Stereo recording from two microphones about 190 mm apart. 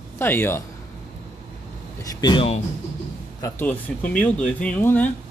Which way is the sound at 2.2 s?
25° left (ahead or behind).